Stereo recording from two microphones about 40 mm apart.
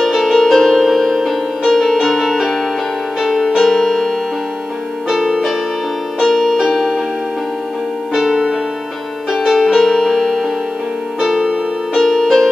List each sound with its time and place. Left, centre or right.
0.0 s music: centre
6.1 s music: centre
6.4 s music: centre
8.1 s music: centre
11.9 s music: centre